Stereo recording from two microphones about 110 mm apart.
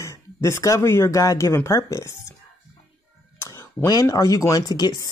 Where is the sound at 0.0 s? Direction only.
25° left (ahead or behind).